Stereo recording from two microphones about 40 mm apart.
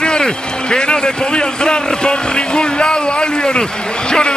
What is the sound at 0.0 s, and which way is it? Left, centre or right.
A man's voice, left.